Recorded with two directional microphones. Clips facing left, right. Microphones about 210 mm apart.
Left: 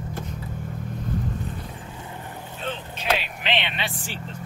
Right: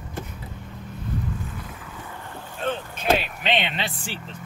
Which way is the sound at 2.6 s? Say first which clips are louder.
Right 4 dB; 50° right (ahead or behind).